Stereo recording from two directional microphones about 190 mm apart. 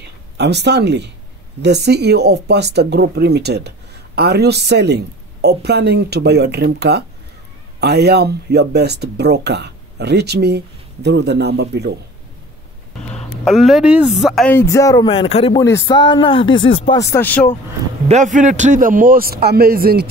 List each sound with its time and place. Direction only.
0.4 s speech: 60° right (ahead or behind)
13.1 s speech: centre (ahead or behind)
14.5 s speech: 15° left (ahead or behind)
15.0 s speech: 30° left (ahead or behind)
15.5 s speech: 15° left (ahead or behind)
17.0 s speech: 10° left (ahead or behind)
18.0 s a man's voice: 40° right (ahead or behind)